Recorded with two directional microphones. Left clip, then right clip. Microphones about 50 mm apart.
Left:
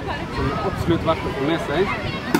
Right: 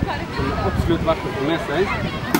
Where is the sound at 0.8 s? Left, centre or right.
Centre.